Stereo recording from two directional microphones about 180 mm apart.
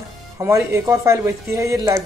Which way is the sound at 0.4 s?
15° right (ahead or behind).